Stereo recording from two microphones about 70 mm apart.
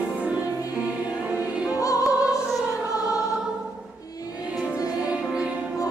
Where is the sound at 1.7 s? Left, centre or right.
Left.